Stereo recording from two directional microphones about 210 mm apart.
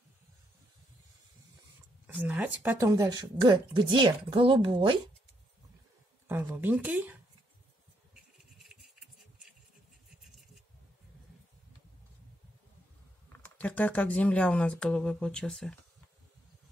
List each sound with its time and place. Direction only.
2.0 s speech: 10° right (ahead or behind); by 4.9 s 25° right (ahead or behind)
6.2 s speech: 10° right (ahead or behind)
13.6 s speech: 5° left (ahead or behind)